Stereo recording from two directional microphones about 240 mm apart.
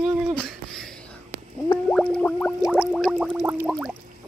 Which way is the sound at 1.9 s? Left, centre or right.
Centre.